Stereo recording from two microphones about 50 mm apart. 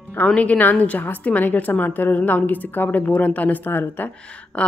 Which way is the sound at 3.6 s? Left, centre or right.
Left.